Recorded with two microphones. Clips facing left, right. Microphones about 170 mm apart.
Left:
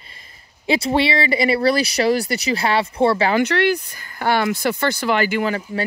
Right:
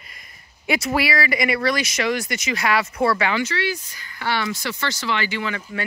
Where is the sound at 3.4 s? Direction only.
60° left (ahead or behind).